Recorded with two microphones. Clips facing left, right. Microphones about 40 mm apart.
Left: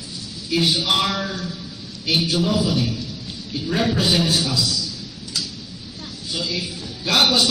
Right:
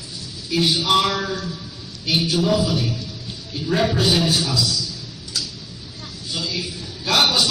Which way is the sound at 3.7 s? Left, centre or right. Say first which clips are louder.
Right 1 dB; centre.